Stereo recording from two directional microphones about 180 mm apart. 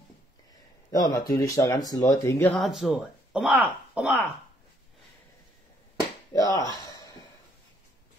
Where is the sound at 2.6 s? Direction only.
Centre (ahead or behind).